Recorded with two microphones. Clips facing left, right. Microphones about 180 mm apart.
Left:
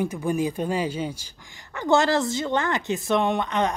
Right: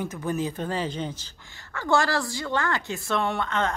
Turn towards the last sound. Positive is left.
turn(degrees=15)  # may be behind; listen again after turning